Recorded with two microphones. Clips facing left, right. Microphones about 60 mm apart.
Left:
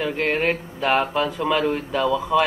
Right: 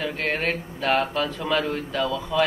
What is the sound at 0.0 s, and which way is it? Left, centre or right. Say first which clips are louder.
Speech: left 4 dB; centre.